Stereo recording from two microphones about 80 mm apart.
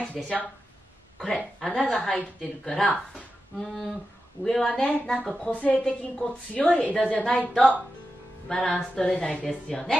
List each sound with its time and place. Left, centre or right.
0.0 s a woman's voice: centre